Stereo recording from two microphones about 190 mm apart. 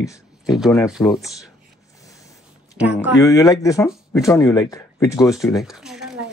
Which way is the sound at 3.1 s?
15° left (ahead or behind).